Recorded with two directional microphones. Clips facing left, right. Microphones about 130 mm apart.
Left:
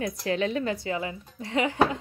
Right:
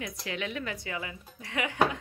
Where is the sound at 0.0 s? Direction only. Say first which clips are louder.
Left 9 dB; 35° left (ahead or behind).